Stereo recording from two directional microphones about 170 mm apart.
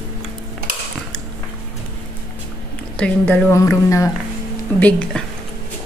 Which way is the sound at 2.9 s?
5° left (ahead or behind).